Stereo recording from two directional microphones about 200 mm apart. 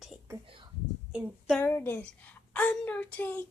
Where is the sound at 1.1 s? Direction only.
5° right (ahead or behind).